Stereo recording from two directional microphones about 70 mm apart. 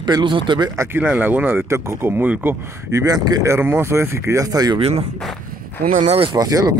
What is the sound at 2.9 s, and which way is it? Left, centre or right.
Speech, right.